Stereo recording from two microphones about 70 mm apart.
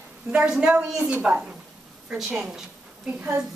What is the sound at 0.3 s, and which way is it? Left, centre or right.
A woman's voice, centre.